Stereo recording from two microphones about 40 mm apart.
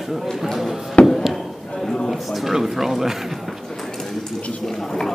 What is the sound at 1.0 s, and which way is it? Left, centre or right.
Chop, left.